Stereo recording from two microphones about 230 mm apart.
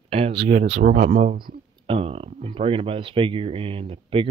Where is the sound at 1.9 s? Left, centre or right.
Right.